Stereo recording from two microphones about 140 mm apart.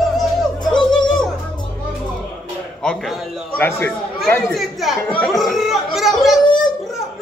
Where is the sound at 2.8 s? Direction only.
5° left (ahead or behind).